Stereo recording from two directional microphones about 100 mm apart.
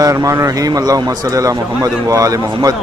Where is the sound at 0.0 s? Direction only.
35° right (ahead or behind).